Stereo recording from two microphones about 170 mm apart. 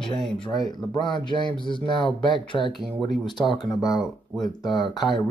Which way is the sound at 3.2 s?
25° left (ahead or behind).